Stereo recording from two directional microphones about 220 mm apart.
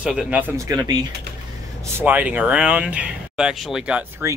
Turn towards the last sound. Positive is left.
turn(degrees=-5)  # may be behind; listen again after turning